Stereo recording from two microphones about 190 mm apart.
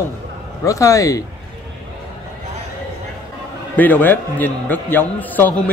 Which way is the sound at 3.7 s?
10° left (ahead or behind).